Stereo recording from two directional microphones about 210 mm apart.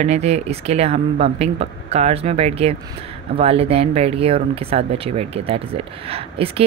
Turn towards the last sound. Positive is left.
turn(degrees=-30)  # may be behind; listen again after turning